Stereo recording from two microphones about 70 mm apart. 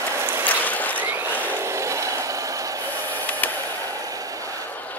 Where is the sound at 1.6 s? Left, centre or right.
Right.